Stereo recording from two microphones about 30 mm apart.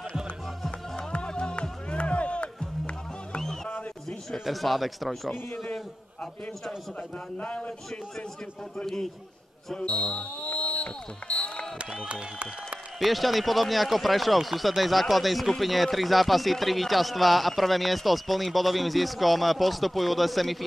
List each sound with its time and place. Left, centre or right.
0.9 s music: left
4.5 s speech: centre
7.3 s speech: left
8.7 s a man's voice: centre
9.8 s speech: left
12.1 s speech: right
13.0 s speech: centre